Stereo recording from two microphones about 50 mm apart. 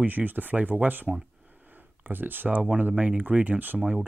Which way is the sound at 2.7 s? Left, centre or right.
Right.